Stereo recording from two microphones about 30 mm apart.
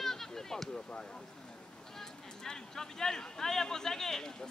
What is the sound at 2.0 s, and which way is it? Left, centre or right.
Speech, centre.